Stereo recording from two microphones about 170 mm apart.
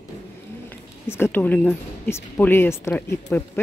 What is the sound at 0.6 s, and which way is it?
A woman's voice, 15° left (ahead or behind).